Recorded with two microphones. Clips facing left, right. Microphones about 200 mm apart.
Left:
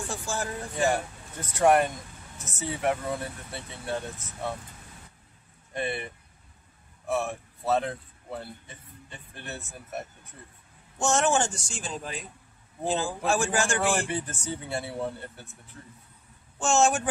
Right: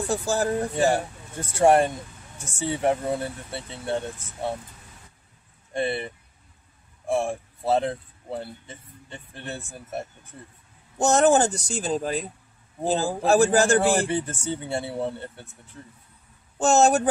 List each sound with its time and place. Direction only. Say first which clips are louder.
0.1 s a man's voice: right 11 dB; 40° right (ahead or behind)
5.7 s a man's voice: right 5 dB; 30° right (ahead or behind)
16.5 s a man's voice: right 5 dB; 40° right (ahead or behind)